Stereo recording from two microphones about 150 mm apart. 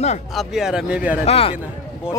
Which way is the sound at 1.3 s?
40° left (ahead or behind).